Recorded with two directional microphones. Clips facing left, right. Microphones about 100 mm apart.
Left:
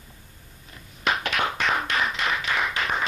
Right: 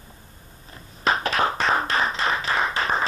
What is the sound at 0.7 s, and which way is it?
Clapping, 35° right (ahead or behind).